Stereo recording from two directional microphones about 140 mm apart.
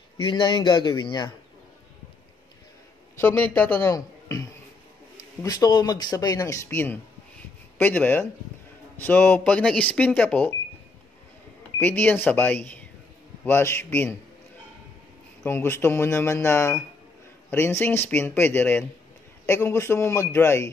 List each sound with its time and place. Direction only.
0.2 s a man's voice: 35° left (ahead or behind)
3.2 s speech: 15° left (ahead or behind)
5.4 s speech: 25° left (ahead or behind)
11.8 s speech: 15° left (ahead or behind)
15.4 s speech: 15° left (ahead or behind)